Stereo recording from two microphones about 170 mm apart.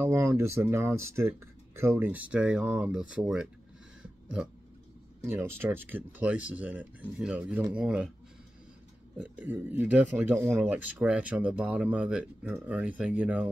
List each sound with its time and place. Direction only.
0.0 s speech: 15° right (ahead or behind)
5.2 s speech: 15° right (ahead or behind)
9.2 s speech: 10° right (ahead or behind)